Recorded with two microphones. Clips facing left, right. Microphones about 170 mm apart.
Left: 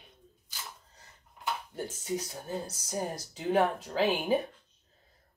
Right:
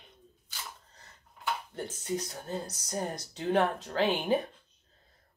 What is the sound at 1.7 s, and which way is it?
A woman's voice, 5° left (ahead or behind).